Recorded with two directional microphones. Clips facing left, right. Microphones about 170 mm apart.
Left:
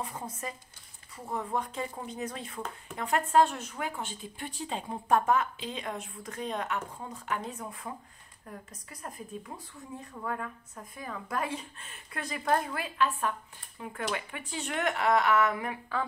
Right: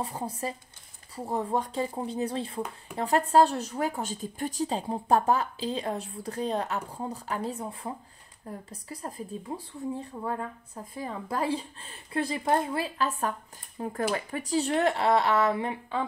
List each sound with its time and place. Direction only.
0.0 s speech: 35° right (ahead or behind)